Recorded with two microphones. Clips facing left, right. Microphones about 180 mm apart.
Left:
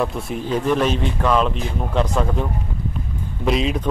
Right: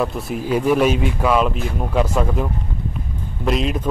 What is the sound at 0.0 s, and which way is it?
A man's voice, 5° right (ahead or behind).